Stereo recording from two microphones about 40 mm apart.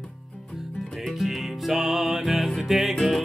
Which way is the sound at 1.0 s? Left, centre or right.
Centre.